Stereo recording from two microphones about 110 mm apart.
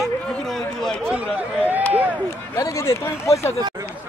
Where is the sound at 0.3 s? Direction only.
5° left (ahead or behind).